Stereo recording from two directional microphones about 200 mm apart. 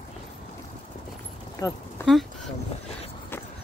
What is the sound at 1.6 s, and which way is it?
Speech, 20° left (ahead or behind).